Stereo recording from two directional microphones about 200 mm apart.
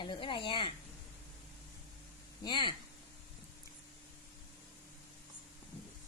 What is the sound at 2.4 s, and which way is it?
Speech, 25° left (ahead or behind).